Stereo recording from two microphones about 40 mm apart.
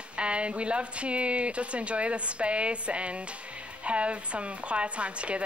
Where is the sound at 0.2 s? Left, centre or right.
Right.